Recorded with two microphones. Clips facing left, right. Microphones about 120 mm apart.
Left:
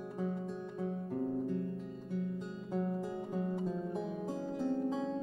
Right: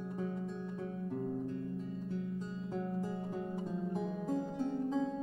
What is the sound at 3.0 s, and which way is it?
Music, centre (ahead or behind).